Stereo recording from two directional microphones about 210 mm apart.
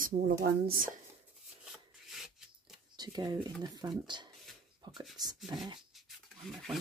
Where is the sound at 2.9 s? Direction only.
20° right (ahead or behind).